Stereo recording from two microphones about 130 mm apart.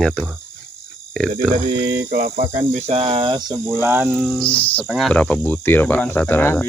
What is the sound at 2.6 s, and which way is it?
Cricket, 55° right (ahead or behind).